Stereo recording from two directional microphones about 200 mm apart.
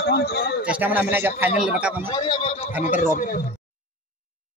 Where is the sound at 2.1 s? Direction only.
20° left (ahead or behind); by 3.4 s 40° left (ahead or behind).